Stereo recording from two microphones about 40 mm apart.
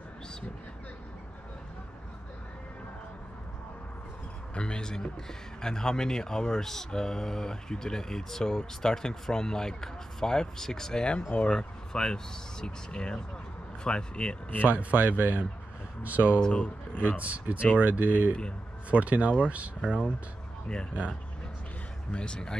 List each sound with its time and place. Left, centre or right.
4.6 s speech: left
11.1 s speech: left
11.4 s speech: centre
14.6 s a man's voice: right
16.5 s speech: left
17.2 s a man's voice: right
22.1 s speech: left